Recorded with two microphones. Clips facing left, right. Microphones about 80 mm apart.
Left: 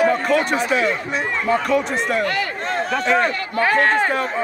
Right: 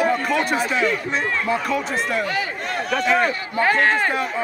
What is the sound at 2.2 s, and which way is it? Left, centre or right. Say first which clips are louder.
Speech: left 2 dB; left.